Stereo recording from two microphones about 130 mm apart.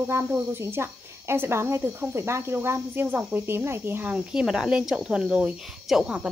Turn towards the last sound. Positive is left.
turn(degrees=-5)  # may be behind; listen again after turning